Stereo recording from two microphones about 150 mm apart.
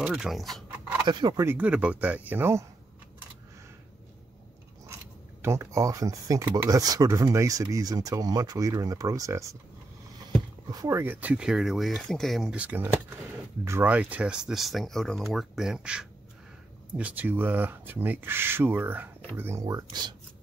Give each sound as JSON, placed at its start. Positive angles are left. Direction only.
{"t": 0.0, "sound": "speech", "side_deg": -5}
{"t": 1.0, "sound": "speech", "side_deg": -30}
{"t": 1.4, "sound": "speech", "side_deg": -15}
{"t": 5.4, "sound": "speech", "side_deg": -20}
{"t": 10.7, "sound": "speech", "side_deg": -20}
{"t": 19.6, "sound": "speech", "side_deg": -25}